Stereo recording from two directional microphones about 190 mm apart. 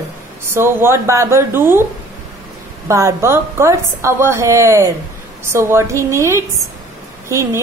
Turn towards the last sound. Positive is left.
turn(degrees=-15)  # may be behind; listen again after turning